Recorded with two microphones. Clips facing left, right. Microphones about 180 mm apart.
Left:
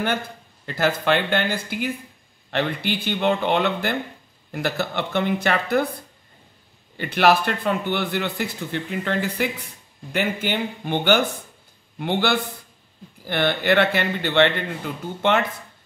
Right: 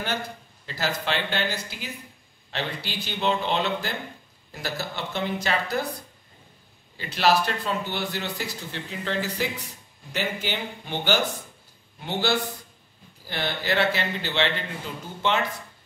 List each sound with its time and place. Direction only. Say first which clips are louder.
0.7 s a man's voice: left 7 dB; 55° left (ahead or behind)
7.0 s a man's voice: left 4 dB; 60° left (ahead or behind)